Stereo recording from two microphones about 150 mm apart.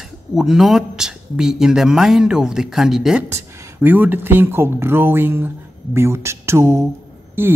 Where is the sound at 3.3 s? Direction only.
15° right (ahead or behind).